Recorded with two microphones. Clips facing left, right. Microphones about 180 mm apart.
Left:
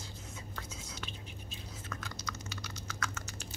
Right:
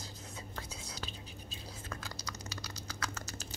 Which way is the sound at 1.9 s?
35° right (ahead or behind).